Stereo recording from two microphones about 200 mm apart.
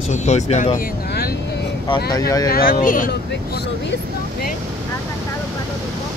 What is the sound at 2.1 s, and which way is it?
Speech, 20° left (ahead or behind).